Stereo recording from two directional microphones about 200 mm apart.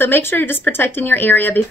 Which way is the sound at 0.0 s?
10° left (ahead or behind).